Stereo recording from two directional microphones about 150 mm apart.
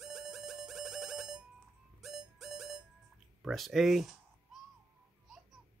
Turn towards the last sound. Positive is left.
turn(degrees=0)  # may be behind; listen again after turning